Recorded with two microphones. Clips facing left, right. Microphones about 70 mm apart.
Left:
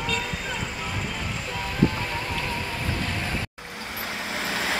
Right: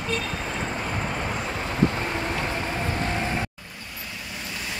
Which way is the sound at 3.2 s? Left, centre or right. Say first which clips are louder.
Right 3 dB; right.